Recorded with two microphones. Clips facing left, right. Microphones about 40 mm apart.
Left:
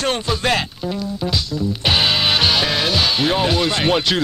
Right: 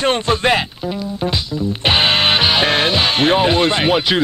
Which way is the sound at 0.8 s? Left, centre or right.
Centre.